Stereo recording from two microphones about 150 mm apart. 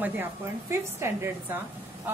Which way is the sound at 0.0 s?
15° right (ahead or behind).